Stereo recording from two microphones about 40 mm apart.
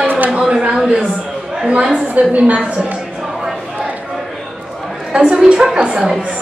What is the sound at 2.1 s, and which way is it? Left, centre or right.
Speech, right.